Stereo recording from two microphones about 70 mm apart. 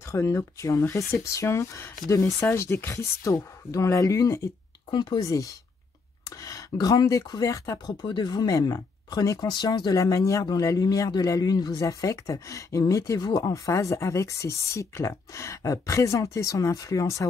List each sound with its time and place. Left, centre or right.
0.1 s a man's voice: left
7.8 s speech: left
8.5 s a man's voice: left
9.5 s speech: left
9.9 s speech: left
10.8 s a man's voice: left